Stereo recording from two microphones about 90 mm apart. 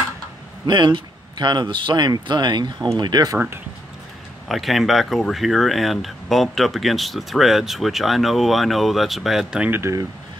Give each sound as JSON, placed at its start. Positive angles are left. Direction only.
{"t": 0.7, "sound": "speech", "side_deg": -60}
{"t": 3.0, "sound": "speech", "side_deg": -45}
{"t": 4.5, "sound": "speech", "side_deg": 0}
{"t": 9.7, "sound": "speech", "side_deg": -30}